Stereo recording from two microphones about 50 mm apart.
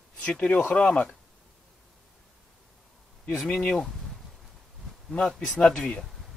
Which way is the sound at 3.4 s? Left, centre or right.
Centre.